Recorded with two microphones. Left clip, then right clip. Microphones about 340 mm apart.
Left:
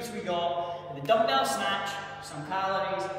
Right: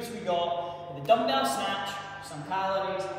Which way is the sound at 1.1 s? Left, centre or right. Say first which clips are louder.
Even; centre.